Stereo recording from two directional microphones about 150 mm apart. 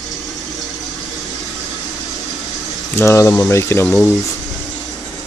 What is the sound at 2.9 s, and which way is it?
Speech, 20° left (ahead or behind).